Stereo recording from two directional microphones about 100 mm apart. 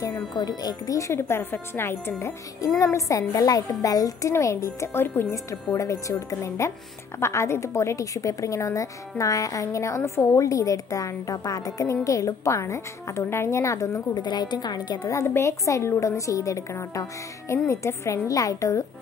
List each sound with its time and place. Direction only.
0.3 s a woman's voice: 40° left (ahead or behind)
14.2 s a woman's voice: 45° left (ahead or behind)